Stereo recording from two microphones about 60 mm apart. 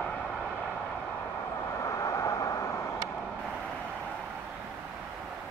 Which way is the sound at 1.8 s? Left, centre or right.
Left.